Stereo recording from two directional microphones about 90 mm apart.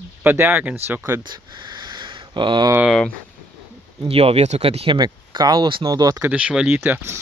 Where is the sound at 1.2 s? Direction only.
55° right (ahead or behind).